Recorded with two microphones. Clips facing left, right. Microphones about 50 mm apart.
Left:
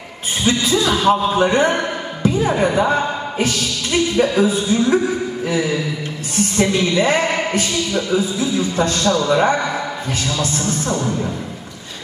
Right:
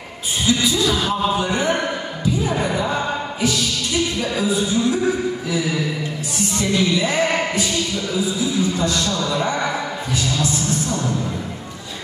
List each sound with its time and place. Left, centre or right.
0.5 s music: left
2.6 s speech: left
4.2 s music: left
6.3 s speech: left
10.4 s music: left